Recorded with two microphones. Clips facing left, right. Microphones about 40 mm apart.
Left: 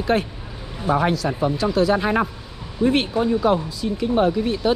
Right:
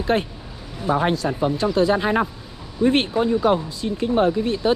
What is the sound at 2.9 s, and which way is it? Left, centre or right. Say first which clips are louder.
Speech: right 1 dB; right.